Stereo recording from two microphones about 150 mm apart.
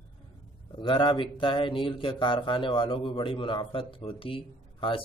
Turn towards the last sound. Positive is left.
turn(degrees=35)  # may be behind; listen again after turning